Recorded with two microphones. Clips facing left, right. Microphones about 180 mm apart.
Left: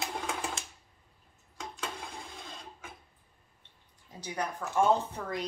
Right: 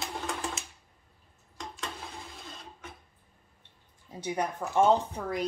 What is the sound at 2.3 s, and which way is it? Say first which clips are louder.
Sewing machine: even; centre (ahead or behind).